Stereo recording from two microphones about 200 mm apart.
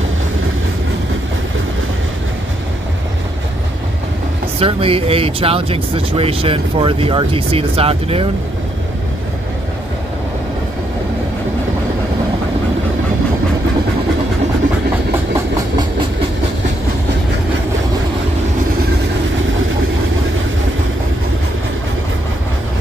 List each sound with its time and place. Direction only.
4.6 s speech: 30° right (ahead or behind)